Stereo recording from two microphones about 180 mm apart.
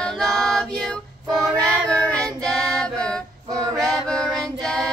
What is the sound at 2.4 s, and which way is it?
Female singing, 5° left (ahead or behind).